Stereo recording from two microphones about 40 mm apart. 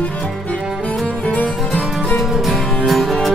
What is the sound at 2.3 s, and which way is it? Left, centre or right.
Music, centre.